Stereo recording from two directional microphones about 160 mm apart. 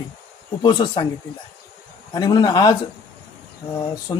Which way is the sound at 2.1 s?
25° left (ahead or behind).